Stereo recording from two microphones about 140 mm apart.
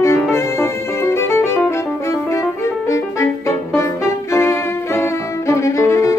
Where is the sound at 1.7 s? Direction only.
20° left (ahead or behind).